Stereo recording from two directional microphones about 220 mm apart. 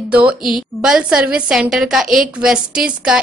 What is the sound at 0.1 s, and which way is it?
Speech, 5° right (ahead or behind).